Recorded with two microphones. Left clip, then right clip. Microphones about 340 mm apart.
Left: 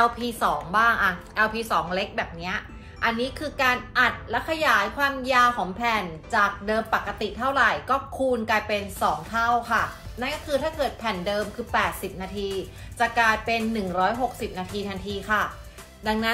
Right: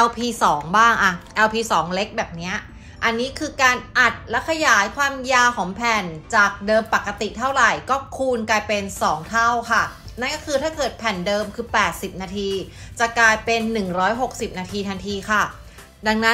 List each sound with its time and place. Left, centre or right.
0.0 s a woman's voice: right